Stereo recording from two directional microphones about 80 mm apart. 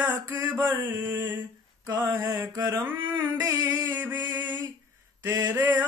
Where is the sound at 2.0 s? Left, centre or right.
Right.